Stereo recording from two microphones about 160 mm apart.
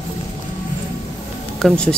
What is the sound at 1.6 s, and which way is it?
Speech, 5° left (ahead or behind).